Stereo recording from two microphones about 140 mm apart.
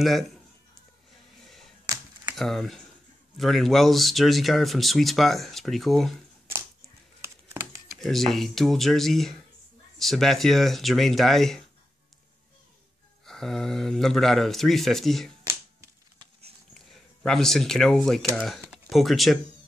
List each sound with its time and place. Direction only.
2.3 s speech: centre (ahead or behind)
7.2 s a sound: 15° right (ahead or behind)
8.0 s speech: centre (ahead or behind)
13.2 s speech: 5° left (ahead or behind)
16.7 s speech: 5° left (ahead or behind)